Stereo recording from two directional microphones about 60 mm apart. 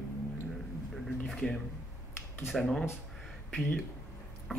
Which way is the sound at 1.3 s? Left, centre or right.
Centre.